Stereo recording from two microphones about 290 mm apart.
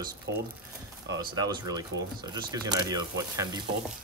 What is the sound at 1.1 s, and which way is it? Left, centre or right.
Speech, centre.